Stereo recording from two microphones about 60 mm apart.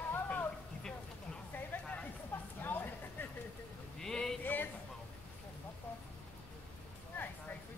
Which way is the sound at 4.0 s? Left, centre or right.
Centre.